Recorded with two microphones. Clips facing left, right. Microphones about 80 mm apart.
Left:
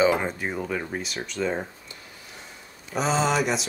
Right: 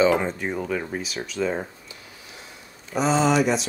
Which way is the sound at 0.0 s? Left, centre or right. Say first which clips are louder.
Right 2 dB; centre.